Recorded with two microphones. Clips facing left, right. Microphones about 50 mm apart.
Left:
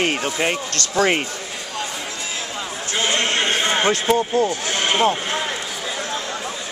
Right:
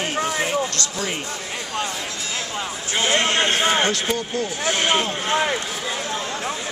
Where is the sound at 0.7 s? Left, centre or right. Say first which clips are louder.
Left 8 dB; left.